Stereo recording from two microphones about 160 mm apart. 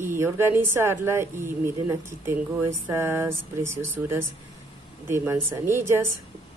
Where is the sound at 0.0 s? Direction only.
15° right (ahead or behind).